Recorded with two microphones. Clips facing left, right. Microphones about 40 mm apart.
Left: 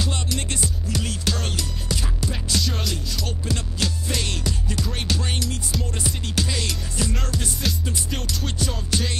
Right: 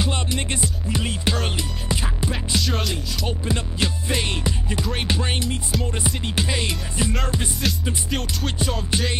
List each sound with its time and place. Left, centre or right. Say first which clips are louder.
0.0 s music: right 2 dB; right
2.6 s music: right 3 dB; centre
3.3 s music: right 5 dB; right
7.6 s music: right 2 dB; centre
8.9 s music: even; right